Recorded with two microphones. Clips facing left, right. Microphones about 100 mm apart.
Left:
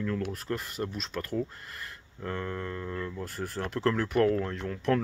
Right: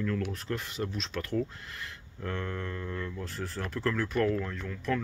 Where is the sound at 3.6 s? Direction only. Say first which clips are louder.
Left 3 dB; 25° left (ahead or behind).